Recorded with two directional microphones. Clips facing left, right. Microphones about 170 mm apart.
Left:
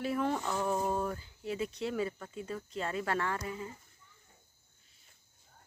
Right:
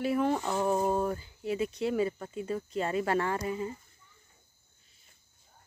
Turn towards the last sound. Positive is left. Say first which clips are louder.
# right 5 dB
turn(degrees=-20)  # may be behind; listen again after turning